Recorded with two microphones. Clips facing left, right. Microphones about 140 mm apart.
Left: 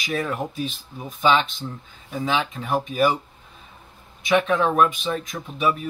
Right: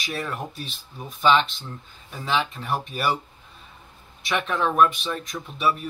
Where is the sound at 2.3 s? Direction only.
5° left (ahead or behind).